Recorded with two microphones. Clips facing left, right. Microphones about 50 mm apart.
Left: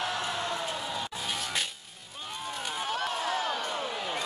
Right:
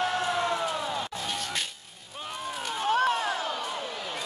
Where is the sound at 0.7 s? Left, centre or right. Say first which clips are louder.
Right 4 dB; centre.